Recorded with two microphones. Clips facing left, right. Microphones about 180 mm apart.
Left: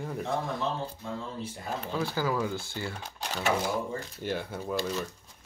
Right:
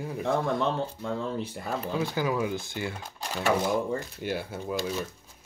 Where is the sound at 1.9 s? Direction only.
15° right (ahead or behind).